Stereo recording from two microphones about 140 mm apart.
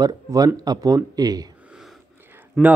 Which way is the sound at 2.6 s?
5° left (ahead or behind).